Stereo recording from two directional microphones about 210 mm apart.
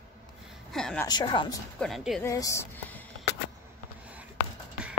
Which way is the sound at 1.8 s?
Centre (ahead or behind).